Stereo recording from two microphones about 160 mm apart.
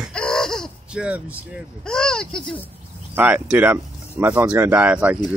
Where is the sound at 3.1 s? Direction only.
10° right (ahead or behind).